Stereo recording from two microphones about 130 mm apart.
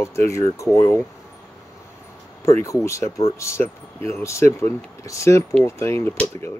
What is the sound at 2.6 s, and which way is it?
Speech, 25° left (ahead or behind).